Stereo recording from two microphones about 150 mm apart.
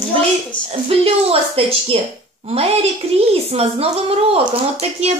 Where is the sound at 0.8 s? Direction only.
40° right (ahead or behind).